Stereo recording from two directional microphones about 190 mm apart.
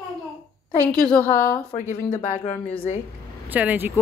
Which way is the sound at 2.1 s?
40° left (ahead or behind).